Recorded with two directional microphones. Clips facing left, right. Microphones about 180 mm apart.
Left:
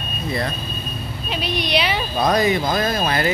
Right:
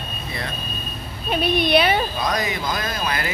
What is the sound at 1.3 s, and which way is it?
Speech, 55° right (ahead or behind).